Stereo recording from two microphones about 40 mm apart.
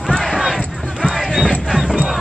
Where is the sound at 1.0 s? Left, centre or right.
Centre.